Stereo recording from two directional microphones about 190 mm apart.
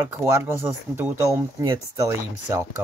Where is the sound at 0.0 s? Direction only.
15° right (ahead or behind).